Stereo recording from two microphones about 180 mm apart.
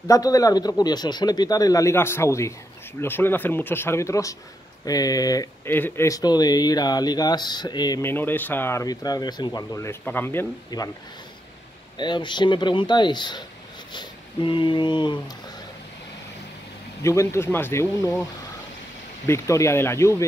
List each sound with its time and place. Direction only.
0.1 s speech: 20° left (ahead or behind)
12.0 s speech: 25° left (ahead or behind)
17.0 s speech: 15° left (ahead or behind)
19.2 s speech: 15° left (ahead or behind)